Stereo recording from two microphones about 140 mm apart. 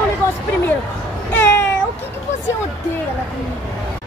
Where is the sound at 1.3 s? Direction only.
15° left (ahead or behind).